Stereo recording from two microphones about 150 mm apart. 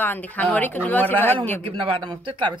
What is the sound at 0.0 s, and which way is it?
Speech, 10° left (ahead or behind).